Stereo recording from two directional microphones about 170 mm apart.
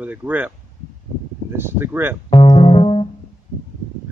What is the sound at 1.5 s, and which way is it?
Speech, 15° right (ahead or behind).